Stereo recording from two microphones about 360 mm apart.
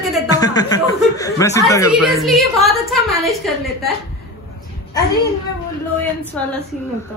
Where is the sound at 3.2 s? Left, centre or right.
Centre.